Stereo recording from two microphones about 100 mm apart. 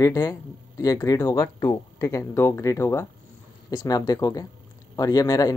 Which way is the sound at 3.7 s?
40° left (ahead or behind).